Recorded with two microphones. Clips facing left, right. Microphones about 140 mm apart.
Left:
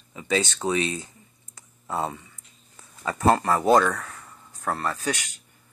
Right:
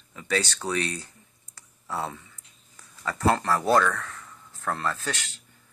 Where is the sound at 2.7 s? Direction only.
20° left (ahead or behind).